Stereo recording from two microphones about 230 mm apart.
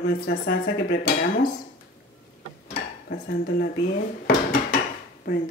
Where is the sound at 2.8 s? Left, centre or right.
Left.